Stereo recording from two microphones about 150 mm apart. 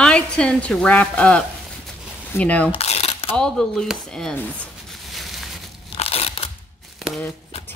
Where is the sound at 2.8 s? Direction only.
45° left (ahead or behind).